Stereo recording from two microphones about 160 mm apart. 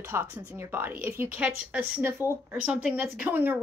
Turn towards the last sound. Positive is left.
turn(degrees=-10)  # may be behind; listen again after turning